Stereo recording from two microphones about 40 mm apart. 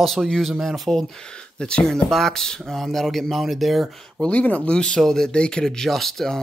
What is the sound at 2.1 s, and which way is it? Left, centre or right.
Speech, centre.